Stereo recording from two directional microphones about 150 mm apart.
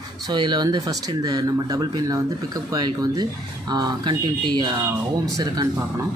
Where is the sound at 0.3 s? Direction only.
30° right (ahead or behind).